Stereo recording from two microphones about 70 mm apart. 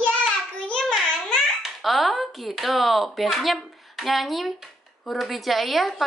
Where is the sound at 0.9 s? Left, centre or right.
Centre.